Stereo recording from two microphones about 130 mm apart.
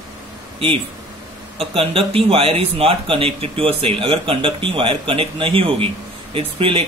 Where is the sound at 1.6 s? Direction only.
45° right (ahead or behind).